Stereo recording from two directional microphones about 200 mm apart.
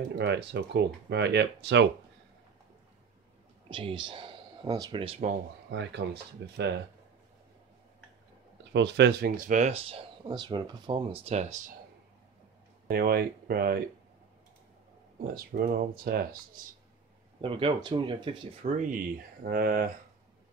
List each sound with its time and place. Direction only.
0.2 s speech: 60° right (ahead or behind)
3.7 s speech: 25° right (ahead or behind)
5.7 s speech: 60° right (ahead or behind)
8.7 s speech: 60° right (ahead or behind)
9.5 s speech: 35° right (ahead or behind)
12.8 s speech: 50° right (ahead or behind)
15.3 s speech: 50° right (ahead or behind)
17.4 s speech: 25° right (ahead or behind)
19.4 s speech: 45° right (ahead or behind)